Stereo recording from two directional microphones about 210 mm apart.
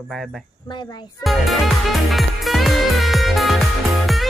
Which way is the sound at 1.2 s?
Centre (ahead or behind).